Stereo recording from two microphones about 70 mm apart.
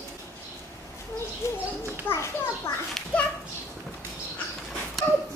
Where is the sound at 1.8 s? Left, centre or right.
Left.